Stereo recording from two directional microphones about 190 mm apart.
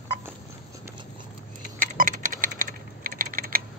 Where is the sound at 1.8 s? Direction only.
45° right (ahead or behind).